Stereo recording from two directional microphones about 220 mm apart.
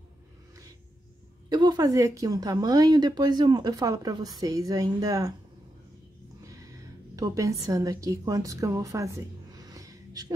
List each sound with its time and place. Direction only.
1.5 s a woman's voice: 20° right (ahead or behind)
7.2 s a woman's voice: 15° right (ahead or behind)